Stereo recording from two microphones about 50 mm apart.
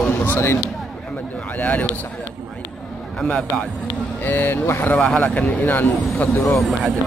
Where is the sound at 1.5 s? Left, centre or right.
Left.